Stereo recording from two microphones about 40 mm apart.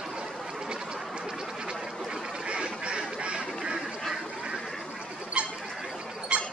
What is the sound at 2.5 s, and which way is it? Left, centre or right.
Duck, right.